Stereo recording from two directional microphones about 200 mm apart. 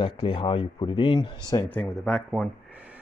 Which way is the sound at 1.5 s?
5° left (ahead or behind).